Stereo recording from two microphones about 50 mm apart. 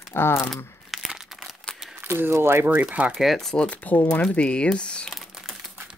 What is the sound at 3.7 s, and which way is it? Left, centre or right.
Speech, left.